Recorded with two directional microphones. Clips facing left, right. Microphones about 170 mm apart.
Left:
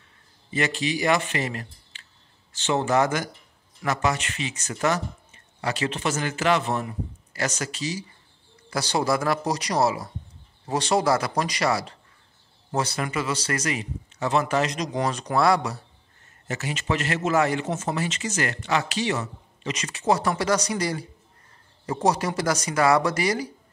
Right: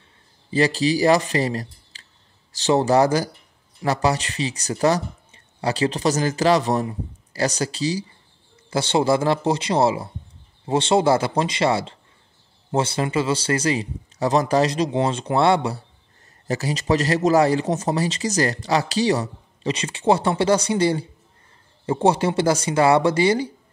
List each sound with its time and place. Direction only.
0.5 s a man's voice: 35° right (ahead or behind)